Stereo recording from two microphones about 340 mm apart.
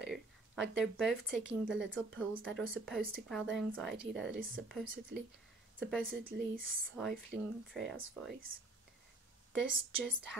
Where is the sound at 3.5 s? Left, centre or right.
Centre.